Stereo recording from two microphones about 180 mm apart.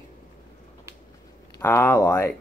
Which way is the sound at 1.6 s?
10° left (ahead or behind).